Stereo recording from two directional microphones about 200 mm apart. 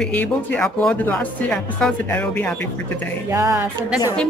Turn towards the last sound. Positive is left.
turn(degrees=-10)  # may be behind; listen again after turning